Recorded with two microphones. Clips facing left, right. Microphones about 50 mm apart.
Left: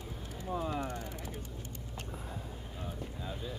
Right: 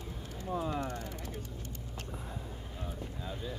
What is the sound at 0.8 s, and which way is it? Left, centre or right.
Speech, left.